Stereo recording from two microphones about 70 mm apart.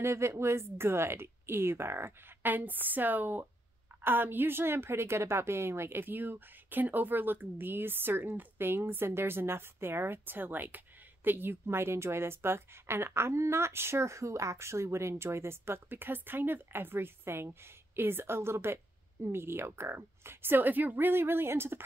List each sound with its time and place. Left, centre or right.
0.0 s a woman's voice: right